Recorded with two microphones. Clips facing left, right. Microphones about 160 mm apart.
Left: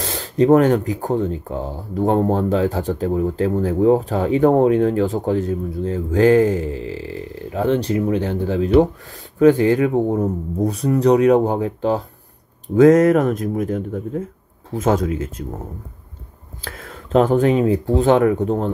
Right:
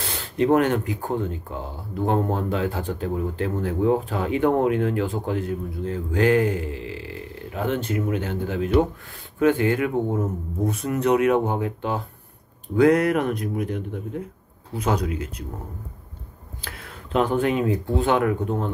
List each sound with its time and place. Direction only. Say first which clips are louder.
0.0 s speech: left 6 dB; 40° left (ahead or behind)
16.6 s speech: left 6 dB; 45° left (ahead or behind)